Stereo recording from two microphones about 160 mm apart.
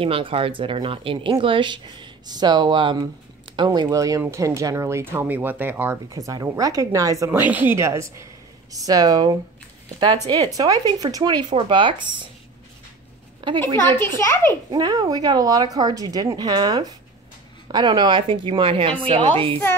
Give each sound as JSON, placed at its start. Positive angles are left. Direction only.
{"t": 0.0, "sound": "a woman's voice", "side_deg": -35}
{"t": 13.4, "sound": "a woman's voice", "side_deg": -30}
{"t": 13.7, "sound": "a child's voice", "side_deg": 15}
{"t": 14.5, "sound": "a woman's voice", "side_deg": -25}